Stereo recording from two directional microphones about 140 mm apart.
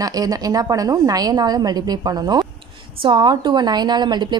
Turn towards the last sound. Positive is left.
turn(degrees=-30)  # may be behind; listen again after turning